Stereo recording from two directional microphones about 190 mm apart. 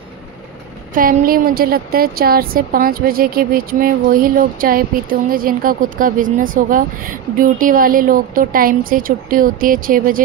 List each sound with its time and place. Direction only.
0.9 s speech: 50° right (ahead or behind)